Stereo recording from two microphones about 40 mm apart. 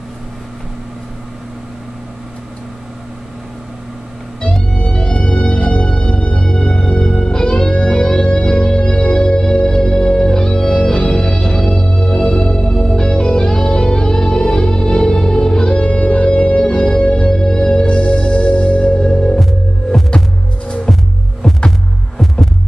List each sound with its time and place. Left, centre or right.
4.6 s music: left
20.6 s music: left
22.2 s throbbing: centre